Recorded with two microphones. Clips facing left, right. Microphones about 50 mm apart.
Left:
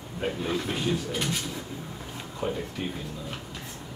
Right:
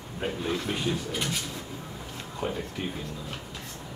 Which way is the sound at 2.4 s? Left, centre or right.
Centre.